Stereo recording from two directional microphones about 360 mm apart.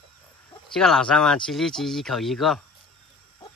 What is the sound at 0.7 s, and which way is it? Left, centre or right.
Speech, centre.